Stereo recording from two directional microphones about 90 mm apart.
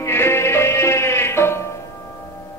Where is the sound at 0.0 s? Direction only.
30° left (ahead or behind).